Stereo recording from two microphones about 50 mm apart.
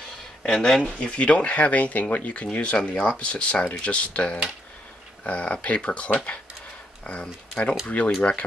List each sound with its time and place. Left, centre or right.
0.4 s speech: centre
0.9 s speech: left